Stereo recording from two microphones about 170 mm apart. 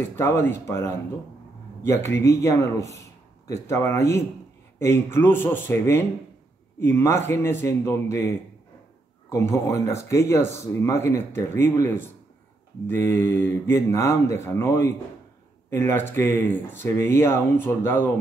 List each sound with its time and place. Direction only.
0.1 s speech: 15° left (ahead or behind)
9.3 s speech: 15° left (ahead or behind)